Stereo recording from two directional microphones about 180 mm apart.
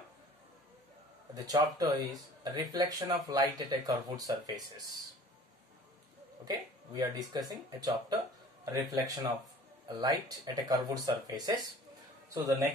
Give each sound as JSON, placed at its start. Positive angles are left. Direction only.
{"t": 1.3, "sound": "speech", "side_deg": -20}
{"t": 6.4, "sound": "speech", "side_deg": -20}